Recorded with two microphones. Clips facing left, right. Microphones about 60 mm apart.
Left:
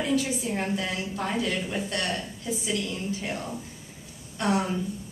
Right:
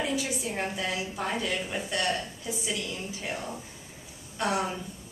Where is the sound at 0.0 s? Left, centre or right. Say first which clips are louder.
Left 4 dB; centre.